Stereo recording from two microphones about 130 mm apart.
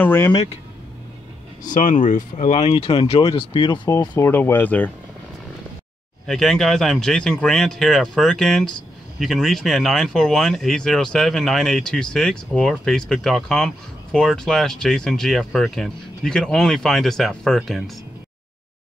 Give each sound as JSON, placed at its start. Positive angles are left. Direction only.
{"t": 0.0, "sound": "speech", "side_deg": 15}
{"t": 1.6, "sound": "speech", "side_deg": 80}
{"t": 4.1, "sound": "speech", "side_deg": 15}
{"t": 6.2, "sound": "speech", "side_deg": 0}